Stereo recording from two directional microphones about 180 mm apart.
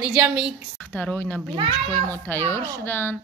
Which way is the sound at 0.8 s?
10° left (ahead or behind).